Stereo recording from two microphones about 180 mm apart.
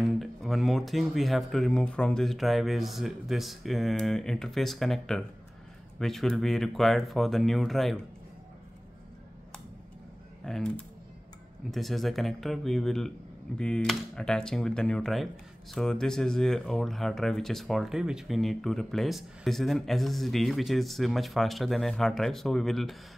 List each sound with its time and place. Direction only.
0.0 s speech: centre (ahead or behind)
10.4 s typing: centre (ahead or behind)
11.7 s speech: centre (ahead or behind)